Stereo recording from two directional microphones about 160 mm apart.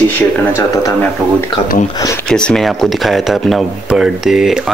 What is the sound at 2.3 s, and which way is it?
Speech, 5° left (ahead or behind).